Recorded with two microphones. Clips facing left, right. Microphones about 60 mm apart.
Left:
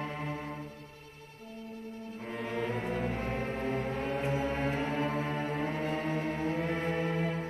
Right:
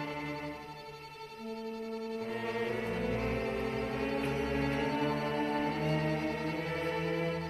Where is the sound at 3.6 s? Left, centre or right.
Right.